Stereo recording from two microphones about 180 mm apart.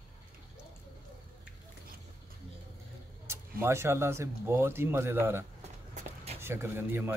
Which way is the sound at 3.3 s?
15° right (ahead or behind).